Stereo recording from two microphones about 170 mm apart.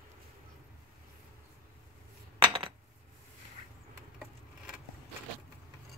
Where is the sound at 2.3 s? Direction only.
30° right (ahead or behind).